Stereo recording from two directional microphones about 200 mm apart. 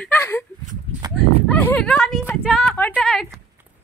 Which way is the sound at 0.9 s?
30° right (ahead or behind).